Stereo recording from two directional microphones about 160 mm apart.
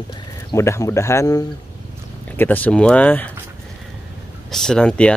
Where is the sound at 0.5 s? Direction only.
20° left (ahead or behind).